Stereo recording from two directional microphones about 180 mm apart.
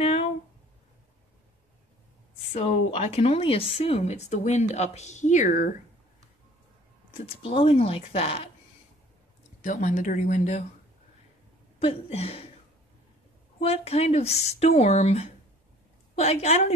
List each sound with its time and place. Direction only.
0.0 s a sound: 35° left (ahead or behind)
2.5 s speech: 35° left (ahead or behind)
7.2 s speech: 30° left (ahead or behind)
9.6 s speech: 45° left (ahead or behind)
11.8 s speech: 35° left (ahead or behind)
13.6 s speech: 35° left (ahead or behind)